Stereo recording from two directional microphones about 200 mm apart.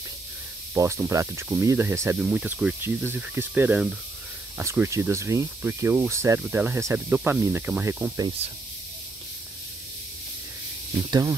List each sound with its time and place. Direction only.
0.7 s speech: 15° right (ahead or behind)
11.1 s speech: 15° right (ahead or behind)